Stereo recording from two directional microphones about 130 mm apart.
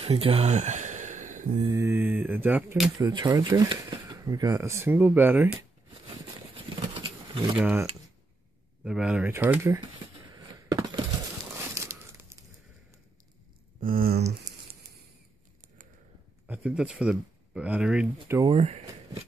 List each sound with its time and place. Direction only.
0.0 s a sound: 45° right (ahead or behind); by 1.5 s 75° right (ahead or behind)
1.6 s mantra: 25° right (ahead or behind)
3.0 s speech: 30° right (ahead or behind); by 5.6 s 15° right (ahead or behind)
6.0 s a sound: 45° right (ahead or behind)
7.5 s mantra: 10° right (ahead or behind)
8.8 s speech: 5° right (ahead or behind)
9.3 s speech: 15° right (ahead or behind)
10.3 s a sound: 30° right (ahead or behind)
11.5 s crumpling: 20° right (ahead or behind)
13.7 s a sound: 90° right
16.4 s speech: 10° right (ahead or behind)
18.4 s speech: 45° right (ahead or behind)